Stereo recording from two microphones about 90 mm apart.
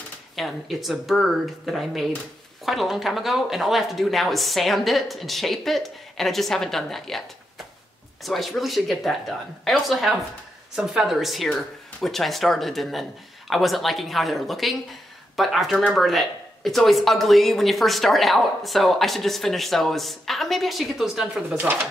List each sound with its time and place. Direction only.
0.4 s speech: centre (ahead or behind)
21.4 s speech: 20° right (ahead or behind)